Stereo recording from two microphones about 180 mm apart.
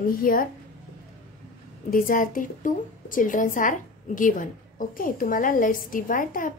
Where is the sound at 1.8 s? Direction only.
50° left (ahead or behind).